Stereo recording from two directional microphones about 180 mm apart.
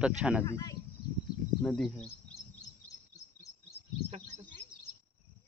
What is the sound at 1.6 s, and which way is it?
Speech, centre (ahead or behind).